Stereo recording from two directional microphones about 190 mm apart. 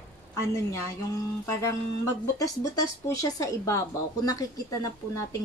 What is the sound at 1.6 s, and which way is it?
Speech, 15° left (ahead or behind).